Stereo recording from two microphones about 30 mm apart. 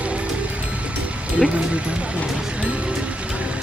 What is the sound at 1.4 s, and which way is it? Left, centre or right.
Speech, right.